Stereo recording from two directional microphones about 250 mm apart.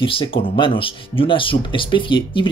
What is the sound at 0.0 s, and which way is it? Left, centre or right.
Speech, left.